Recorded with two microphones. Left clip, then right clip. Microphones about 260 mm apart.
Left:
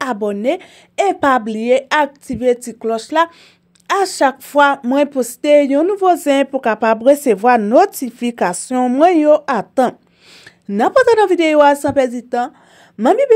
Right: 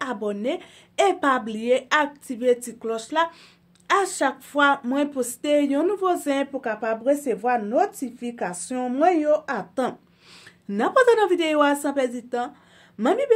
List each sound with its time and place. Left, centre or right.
0.0 s speech: left